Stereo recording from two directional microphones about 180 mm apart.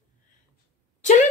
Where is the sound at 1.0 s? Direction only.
40° left (ahead or behind).